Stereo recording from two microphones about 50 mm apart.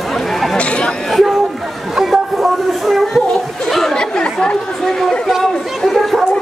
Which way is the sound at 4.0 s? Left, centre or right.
Centre.